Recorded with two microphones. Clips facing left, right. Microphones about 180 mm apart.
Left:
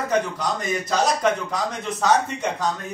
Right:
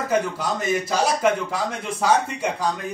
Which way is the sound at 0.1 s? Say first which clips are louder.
Right 1 dB; 5° right (ahead or behind).